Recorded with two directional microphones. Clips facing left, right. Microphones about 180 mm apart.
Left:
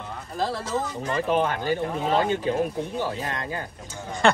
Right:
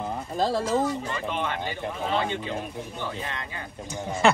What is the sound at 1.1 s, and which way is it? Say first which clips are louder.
Speech: left 6 dB; 40° left (ahead or behind).